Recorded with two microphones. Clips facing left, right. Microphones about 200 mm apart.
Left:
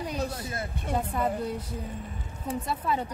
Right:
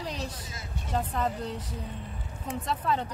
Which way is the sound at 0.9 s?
10° left (ahead or behind).